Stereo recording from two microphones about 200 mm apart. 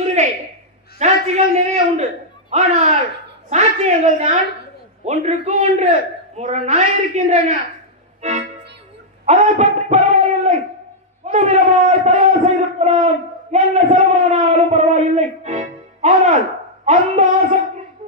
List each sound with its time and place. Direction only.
0.2 s a sound: 35° right (ahead or behind)
0.9 s a man's voice: 35° right (ahead or behind)
8.2 s music: 35° right (ahead or behind)
9.2 s a man's voice: 35° right (ahead or behind)
11.2 s a man's voice: 35° right (ahead or behind)